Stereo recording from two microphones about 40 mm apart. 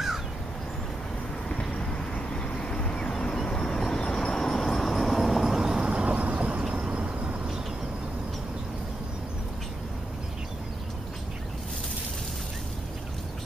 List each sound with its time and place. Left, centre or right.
1.7 s vehicle: left
3.4 s vehicle: centre; by 6.0 s right
6.0 s a sound: right
6.7 s vehicle: right